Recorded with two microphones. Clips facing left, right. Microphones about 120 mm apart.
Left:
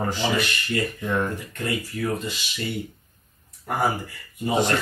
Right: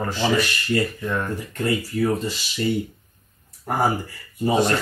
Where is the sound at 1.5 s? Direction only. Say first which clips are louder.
Right 5 dB; 35° right (ahead or behind).